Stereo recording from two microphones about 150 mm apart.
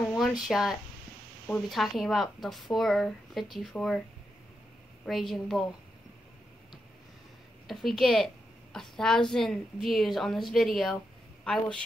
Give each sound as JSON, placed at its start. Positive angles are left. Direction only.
{"t": 0.0, "sound": "a sound", "side_deg": 0}
{"t": 0.5, "sound": "a woman's voice", "side_deg": -5}
{"t": 5.0, "sound": "a woman's voice", "side_deg": 0}
{"t": 7.6, "sound": "a woman's voice", "side_deg": 0}